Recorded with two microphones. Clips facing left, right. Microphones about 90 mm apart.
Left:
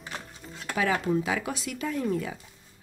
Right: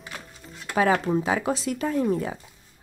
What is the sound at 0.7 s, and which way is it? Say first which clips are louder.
A woman's voice: right 4 dB; 35° right (ahead or behind).